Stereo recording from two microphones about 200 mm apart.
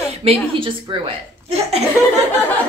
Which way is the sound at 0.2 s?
25° right (ahead or behind).